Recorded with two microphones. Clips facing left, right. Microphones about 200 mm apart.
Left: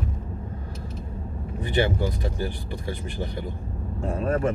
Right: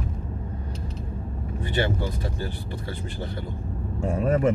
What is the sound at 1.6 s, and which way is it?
Speech, 15° left (ahead or behind).